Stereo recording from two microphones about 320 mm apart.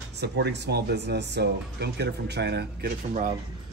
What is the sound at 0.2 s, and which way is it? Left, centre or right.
Speech, right.